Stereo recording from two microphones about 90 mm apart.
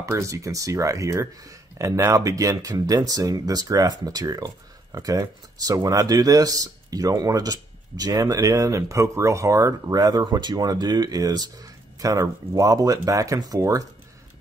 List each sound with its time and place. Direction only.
0.0 s speech: 35° right (ahead or behind)